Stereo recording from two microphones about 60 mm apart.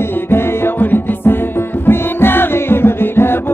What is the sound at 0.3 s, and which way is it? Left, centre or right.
Music, left.